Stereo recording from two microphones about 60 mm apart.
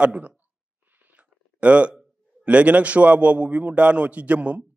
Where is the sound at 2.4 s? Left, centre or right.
Right.